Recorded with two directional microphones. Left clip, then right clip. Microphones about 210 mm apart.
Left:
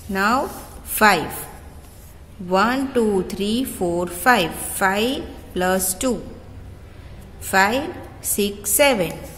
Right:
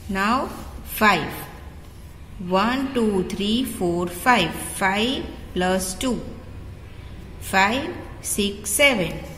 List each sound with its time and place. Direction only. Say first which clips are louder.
0.1 s a woman's voice: left 3 dB; 20° left (ahead or behind)
2.5 s a woman's voice: left 3 dB; 25° left (ahead or behind)
7.4 s a woman's voice: left 2 dB; 20° left (ahead or behind)